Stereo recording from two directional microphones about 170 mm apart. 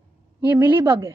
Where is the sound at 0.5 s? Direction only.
15° right (ahead or behind).